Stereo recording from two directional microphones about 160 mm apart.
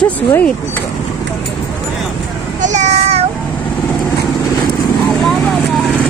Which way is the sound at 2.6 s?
45° right (ahead or behind).